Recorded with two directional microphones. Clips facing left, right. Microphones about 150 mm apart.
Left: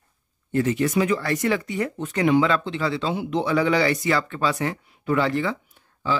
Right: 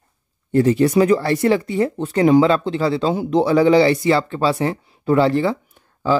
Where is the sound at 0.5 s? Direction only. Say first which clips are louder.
Right 7 dB; 35° right (ahead or behind).